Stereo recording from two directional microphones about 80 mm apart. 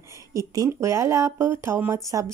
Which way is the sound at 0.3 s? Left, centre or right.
Right.